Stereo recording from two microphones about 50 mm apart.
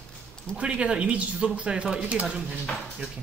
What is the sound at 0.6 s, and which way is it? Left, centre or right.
Speech, centre.